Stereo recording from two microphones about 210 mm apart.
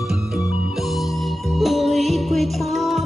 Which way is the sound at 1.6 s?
Centre (ahead or behind).